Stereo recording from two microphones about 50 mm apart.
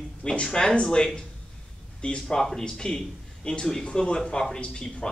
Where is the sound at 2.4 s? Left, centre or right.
Centre.